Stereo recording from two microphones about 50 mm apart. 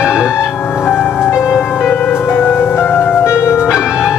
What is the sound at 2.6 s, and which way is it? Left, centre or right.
Music, left.